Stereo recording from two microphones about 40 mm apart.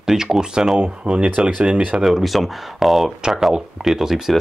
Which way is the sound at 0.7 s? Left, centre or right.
Right.